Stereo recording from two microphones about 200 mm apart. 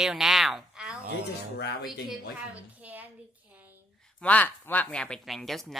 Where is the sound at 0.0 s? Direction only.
Centre (ahead or behind).